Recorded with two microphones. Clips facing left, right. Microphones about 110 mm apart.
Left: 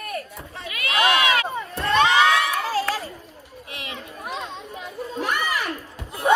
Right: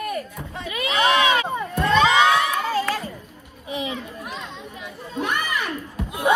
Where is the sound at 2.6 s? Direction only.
5° left (ahead or behind).